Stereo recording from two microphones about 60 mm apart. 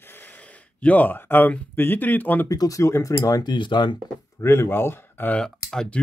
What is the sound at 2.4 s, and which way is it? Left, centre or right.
Speech, left.